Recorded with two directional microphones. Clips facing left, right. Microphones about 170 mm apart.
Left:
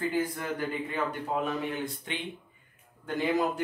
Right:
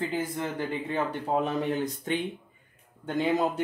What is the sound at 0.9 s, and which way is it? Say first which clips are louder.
Speech: right 6 dB; 35° right (ahead or behind).